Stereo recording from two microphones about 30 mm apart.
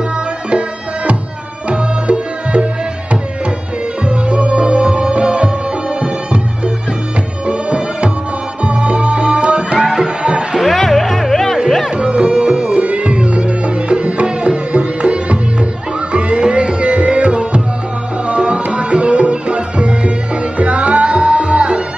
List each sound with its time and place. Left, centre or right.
0.5 s music: right
9.9 s music: right
10.7 s music: centre
11.9 s music: right